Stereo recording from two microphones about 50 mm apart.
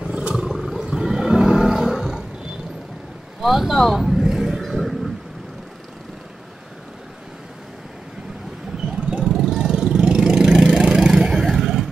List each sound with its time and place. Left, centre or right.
0.0 s roar: right
0.4 s roar: centre
3.3 s vehicle: centre
9.1 s vehicle: centre